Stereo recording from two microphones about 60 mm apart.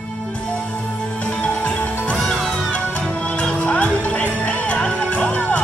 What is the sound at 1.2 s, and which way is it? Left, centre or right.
Music, left.